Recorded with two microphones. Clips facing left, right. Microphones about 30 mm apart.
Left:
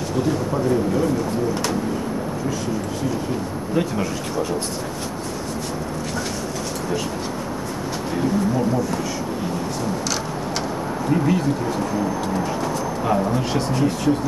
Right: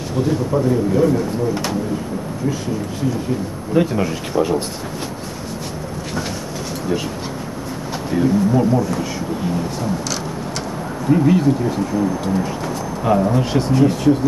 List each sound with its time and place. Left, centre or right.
0.2 s speech: centre
3.7 s speech: centre
8.1 s speech: centre
11.1 s speech: centre